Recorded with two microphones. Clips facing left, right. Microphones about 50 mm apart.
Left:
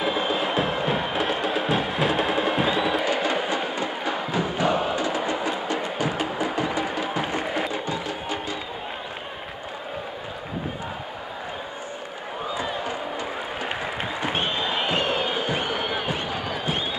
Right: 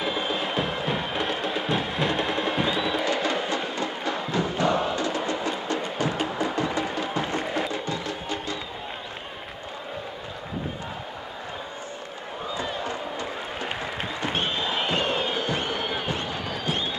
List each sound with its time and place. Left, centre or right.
0.0 s music: centre
12.5 s run: centre
14.2 s crowd: centre